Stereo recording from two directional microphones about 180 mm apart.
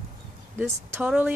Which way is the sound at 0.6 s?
10° right (ahead or behind).